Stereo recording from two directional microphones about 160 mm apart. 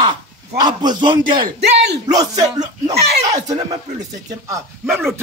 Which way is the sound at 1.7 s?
90° right.